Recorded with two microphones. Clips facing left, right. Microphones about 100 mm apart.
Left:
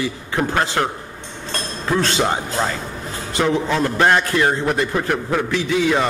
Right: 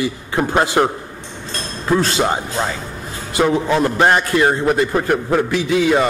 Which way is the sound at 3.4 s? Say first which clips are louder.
Right 3 dB; 15° right (ahead or behind).